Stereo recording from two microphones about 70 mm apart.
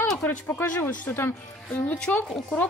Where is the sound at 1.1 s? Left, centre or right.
Left.